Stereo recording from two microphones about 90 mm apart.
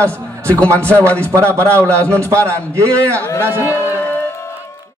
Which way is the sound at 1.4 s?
15° left (ahead or behind).